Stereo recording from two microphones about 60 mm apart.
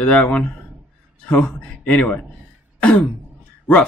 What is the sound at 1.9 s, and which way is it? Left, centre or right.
Speech, left.